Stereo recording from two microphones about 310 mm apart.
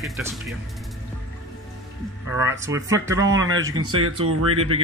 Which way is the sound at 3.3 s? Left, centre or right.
Right.